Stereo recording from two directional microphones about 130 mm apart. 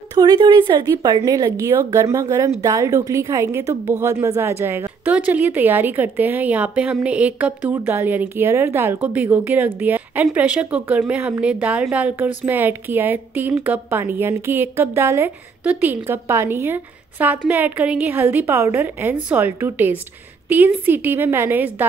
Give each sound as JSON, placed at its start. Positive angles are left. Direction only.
{"t": 0.1, "sound": "a woman's voice", "side_deg": -30}